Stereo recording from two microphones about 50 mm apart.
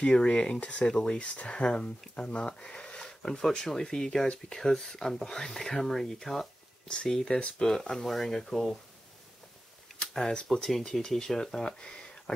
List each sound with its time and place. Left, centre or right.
0.0 s speech: centre
9.9 s speech: centre
11.8 s a sound: centre